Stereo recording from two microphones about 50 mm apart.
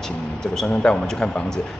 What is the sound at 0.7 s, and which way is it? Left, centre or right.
Speech, centre.